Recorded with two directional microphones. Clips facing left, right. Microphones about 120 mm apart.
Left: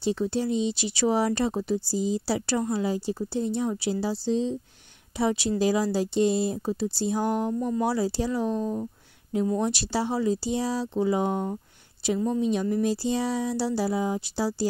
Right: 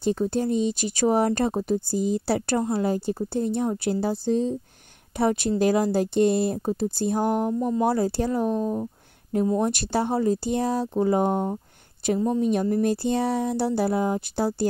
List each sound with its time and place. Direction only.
0.0 s speech: 50° right (ahead or behind)